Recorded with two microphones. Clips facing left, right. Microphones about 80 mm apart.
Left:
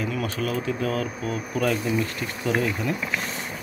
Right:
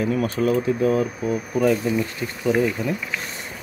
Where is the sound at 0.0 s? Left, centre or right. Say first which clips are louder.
Right 6 dB; right; by 3.0 s centre.